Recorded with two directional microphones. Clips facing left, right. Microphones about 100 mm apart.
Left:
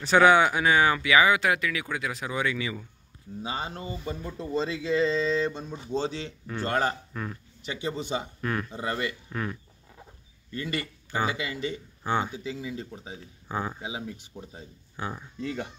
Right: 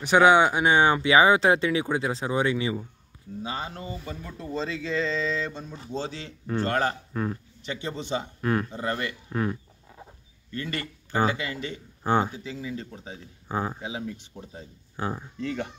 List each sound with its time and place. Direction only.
0.0 s speech: 15° right (ahead or behind)
3.4 s speech: 20° left (ahead or behind)
8.4 s speech: 30° right (ahead or behind)
8.7 s speech: 15° left (ahead or behind)
9.3 s a sound: 25° right (ahead or behind)
10.5 s speech: 15° left (ahead or behind)
11.1 s speech: 35° right (ahead or behind)
11.3 s speech: 15° left (ahead or behind)
12.0 s speech: 35° right (ahead or behind)
12.4 s speech: 20° left (ahead or behind)
13.5 s speech: 30° right (ahead or behind)
13.7 s speech: 15° left (ahead or behind)
15.0 s speech: 30° right (ahead or behind)
15.4 s speech: 10° left (ahead or behind)